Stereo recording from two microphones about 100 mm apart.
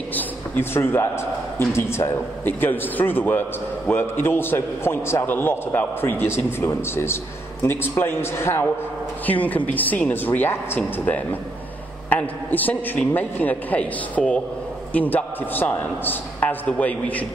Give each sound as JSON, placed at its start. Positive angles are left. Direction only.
{"t": 0.1, "sound": "a man's voice", "side_deg": 25}
{"t": 12.1, "sound": "a man's voice", "side_deg": 15}